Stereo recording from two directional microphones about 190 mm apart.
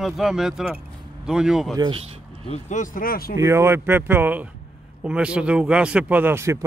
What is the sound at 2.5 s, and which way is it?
Speech, 40° left (ahead or behind).